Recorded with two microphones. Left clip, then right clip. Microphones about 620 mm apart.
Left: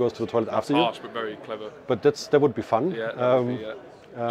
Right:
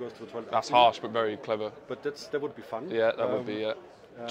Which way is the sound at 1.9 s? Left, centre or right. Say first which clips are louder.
Left 16 dB; left.